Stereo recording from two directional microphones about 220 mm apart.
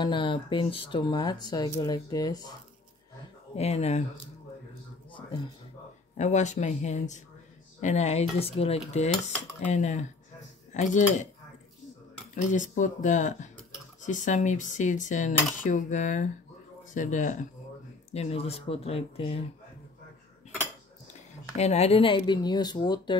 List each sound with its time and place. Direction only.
0.0 s speech: 20° left (ahead or behind)
3.5 s speech: 30° left (ahead or behind)
6.1 s dishes: 30° left (ahead or behind)
12.4 s dishes: 35° left (ahead or behind)
18.1 s speech: 30° left (ahead or behind)
21.5 s speech: 30° left (ahead or behind)